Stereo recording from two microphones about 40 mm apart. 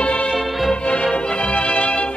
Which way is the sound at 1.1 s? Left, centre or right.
Left.